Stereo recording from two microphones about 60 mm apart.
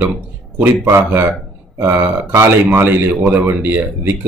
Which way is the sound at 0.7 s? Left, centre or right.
Right.